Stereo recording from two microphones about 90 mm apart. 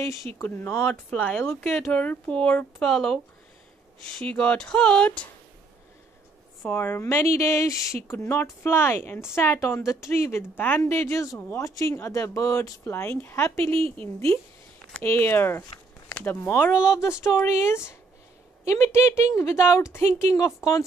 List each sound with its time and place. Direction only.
0.4 s speech: 25° left (ahead or behind)
1.9 s speech: 15° left (ahead or behind)
4.2 s speech: 10° left (ahead or behind)
6.7 s a woman's voice: 25° left (ahead or behind)
15.0 s speech: 25° left (ahead or behind)
16.9 s a woman's voice: 30° left (ahead or behind)